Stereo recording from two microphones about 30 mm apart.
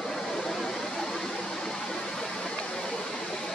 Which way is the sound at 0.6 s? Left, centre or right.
Centre.